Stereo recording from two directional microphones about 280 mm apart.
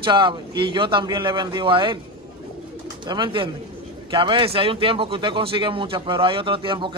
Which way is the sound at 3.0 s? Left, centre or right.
Centre.